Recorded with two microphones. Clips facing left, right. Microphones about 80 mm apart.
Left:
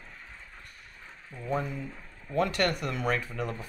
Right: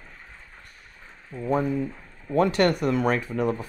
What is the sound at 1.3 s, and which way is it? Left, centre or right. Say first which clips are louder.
Speech: right 8 dB; right.